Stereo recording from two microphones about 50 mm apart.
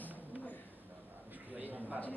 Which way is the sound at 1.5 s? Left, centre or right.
Right.